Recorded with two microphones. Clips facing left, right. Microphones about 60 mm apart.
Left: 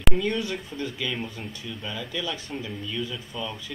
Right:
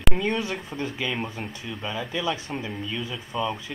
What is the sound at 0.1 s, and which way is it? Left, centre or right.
Speech, right.